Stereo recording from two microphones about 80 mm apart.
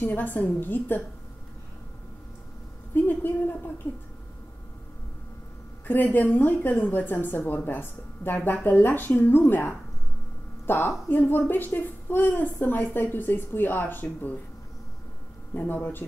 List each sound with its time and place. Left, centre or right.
0.0 s a woman's voice: left
2.9 s a woman's voice: left
5.9 s a woman's voice: left
15.5 s a woman's voice: left